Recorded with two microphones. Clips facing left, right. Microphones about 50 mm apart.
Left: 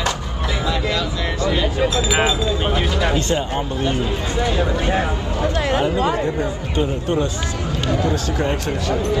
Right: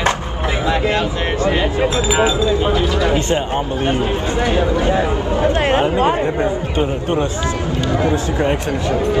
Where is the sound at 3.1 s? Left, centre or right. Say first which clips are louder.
Right 3 dB; right.